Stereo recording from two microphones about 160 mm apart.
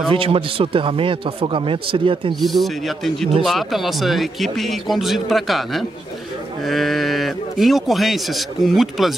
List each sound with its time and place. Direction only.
0.1 s a man's voice: 35° right (ahead or behind)
2.4 s speech: centre (ahead or behind)